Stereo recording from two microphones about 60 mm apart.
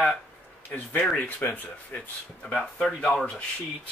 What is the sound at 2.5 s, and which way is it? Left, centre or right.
Speech, centre.